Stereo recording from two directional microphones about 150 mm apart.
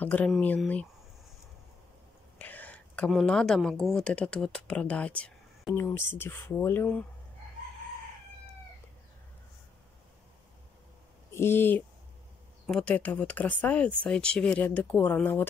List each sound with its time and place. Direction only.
0.0 s speech: 10° left (ahead or behind)
2.3 s a sound: 10° left (ahead or behind)
3.1 s speech: 5° left (ahead or behind)
11.3 s speech: 15° left (ahead or behind)